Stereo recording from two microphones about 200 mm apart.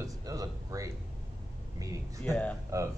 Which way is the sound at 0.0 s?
15° right (ahead or behind).